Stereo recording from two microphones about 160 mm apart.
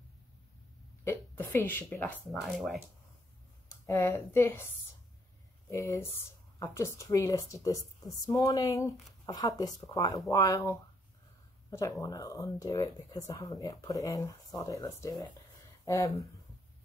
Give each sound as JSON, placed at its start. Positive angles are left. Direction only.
{"t": 1.0, "sound": "speech", "side_deg": 15}
{"t": 2.4, "sound": "speech", "side_deg": 0}
{"t": 3.8, "sound": "a woman's voice", "side_deg": 20}
{"t": 5.7, "sound": "a woman's voice", "side_deg": 20}